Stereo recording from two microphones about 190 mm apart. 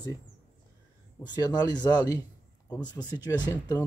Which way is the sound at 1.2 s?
20° left (ahead or behind).